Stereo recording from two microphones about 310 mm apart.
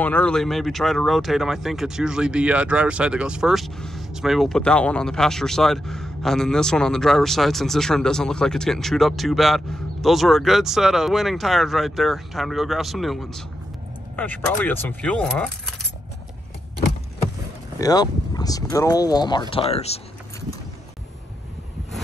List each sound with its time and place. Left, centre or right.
0.0 s speech: centre
17.7 s speech: centre
19.5 s a sound: centre